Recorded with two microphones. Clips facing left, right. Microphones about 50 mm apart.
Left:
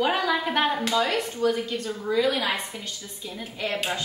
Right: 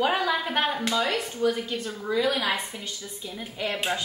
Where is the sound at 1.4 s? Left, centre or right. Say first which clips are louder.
Left 1 dB; centre.